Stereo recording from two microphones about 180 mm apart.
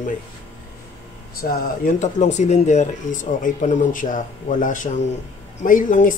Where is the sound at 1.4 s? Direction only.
50° left (ahead or behind).